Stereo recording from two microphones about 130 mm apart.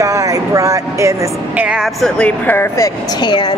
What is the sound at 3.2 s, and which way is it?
Speech, 40° left (ahead or behind).